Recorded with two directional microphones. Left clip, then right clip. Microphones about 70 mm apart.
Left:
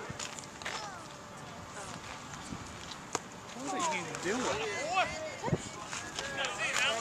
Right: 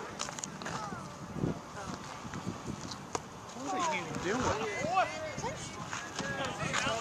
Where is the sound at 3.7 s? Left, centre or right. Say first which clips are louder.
Right 1 dB; centre.